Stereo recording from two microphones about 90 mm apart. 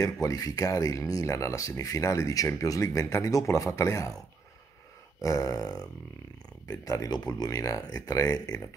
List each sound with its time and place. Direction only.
0.0 s speech: 40° left (ahead or behind)
5.2 s speech: 40° left (ahead or behind)